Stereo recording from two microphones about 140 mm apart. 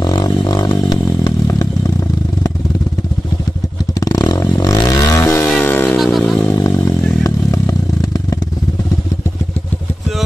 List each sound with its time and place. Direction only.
0.0 s motorcycle: 30° left (ahead or behind)
4.0 s vehicle: 25° left (ahead or behind)
5.6 s a sound: 15° left (ahead or behind)
6.1 s motorcycle: 5° left (ahead or behind)
6.5 s motorcycle: 20° left (ahead or behind)